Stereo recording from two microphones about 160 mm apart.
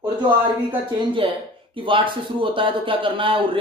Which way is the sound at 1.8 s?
30° right (ahead or behind).